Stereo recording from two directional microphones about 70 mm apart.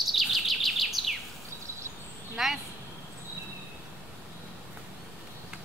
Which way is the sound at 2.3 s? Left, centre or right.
Centre.